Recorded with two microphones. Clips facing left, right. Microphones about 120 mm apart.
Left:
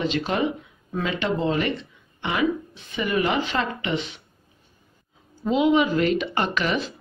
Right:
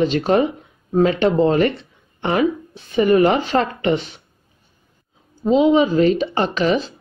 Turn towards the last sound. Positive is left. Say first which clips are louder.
# right 6 dB
turn(degrees=-30)  # may be behind; listen again after turning